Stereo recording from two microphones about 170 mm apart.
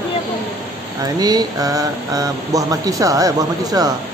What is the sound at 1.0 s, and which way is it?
Mantra, 20° right (ahead or behind).